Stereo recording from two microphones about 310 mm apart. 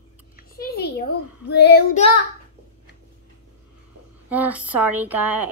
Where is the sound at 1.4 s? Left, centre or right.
Left.